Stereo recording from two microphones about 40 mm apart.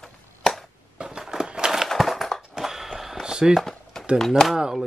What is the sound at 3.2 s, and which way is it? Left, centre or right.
Firecracker, centre.